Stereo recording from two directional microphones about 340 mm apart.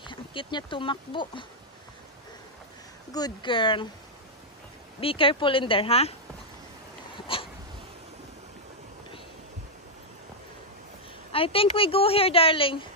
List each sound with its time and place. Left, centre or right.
0.0 s speech: centre
3.1 s a woman's voice: centre
5.0 s a woman's voice: centre
7.2 s dog: centre
11.3 s a woman's voice: centre